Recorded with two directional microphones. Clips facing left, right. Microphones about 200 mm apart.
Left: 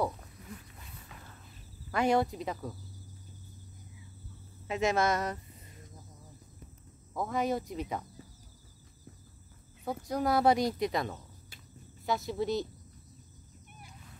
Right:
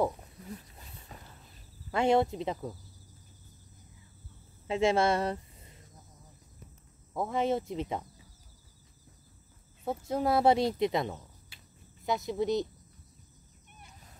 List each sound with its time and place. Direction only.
0.5 s wild animals: 30° right (ahead or behind)
1.9 s speech: 25° right (ahead or behind)
4.6 s speech: 30° right (ahead or behind)
7.2 s speech: 25° right (ahead or behind)
9.8 s speech: 25° right (ahead or behind)